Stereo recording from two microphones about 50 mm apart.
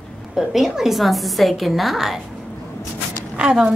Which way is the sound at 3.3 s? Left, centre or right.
Centre.